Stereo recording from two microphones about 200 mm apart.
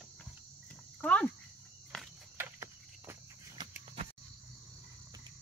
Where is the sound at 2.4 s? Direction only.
10° right (ahead or behind).